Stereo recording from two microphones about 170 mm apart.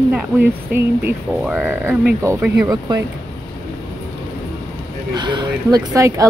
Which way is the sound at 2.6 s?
20° right (ahead or behind).